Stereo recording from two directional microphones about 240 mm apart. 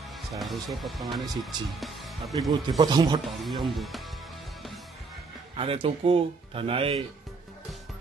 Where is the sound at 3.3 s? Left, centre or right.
Centre.